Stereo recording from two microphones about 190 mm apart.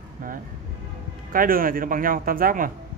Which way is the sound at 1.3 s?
50° right (ahead or behind).